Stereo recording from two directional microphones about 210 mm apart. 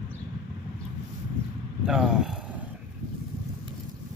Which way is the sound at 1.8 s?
5° right (ahead or behind).